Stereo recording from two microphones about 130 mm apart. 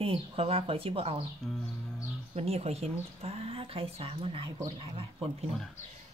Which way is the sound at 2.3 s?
50° right (ahead or behind).